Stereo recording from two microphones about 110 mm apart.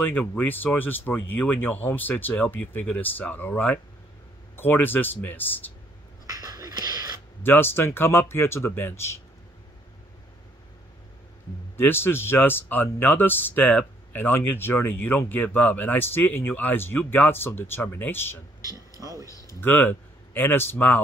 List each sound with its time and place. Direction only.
0.2 s speech: 15° left (ahead or behind)
6.2 s a sound: 35° right (ahead or behind)
7.4 s speech: 20° left (ahead or behind)
11.7 s speech: 20° left (ahead or behind)
18.6 s a sound: 30° right (ahead or behind)
19.2 s speech: 30° left (ahead or behind)
19.6 s speech: 20° left (ahead or behind)